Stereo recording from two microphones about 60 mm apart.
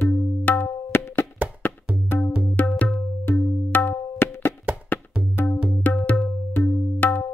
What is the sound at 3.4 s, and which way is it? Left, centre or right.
Percussion, left.